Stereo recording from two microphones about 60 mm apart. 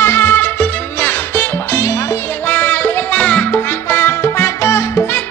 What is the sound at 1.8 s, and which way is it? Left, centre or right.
Music, left.